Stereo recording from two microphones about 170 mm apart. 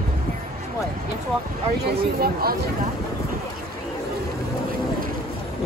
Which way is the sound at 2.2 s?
60° right (ahead or behind).